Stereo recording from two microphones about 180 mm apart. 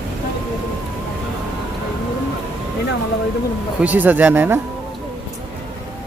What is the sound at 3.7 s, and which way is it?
Speech, 10° right (ahead or behind).